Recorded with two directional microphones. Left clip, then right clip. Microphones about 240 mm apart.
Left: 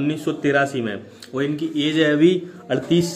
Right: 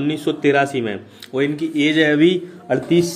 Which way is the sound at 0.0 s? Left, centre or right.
Centre.